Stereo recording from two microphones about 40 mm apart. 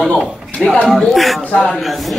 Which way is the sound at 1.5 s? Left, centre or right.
Centre.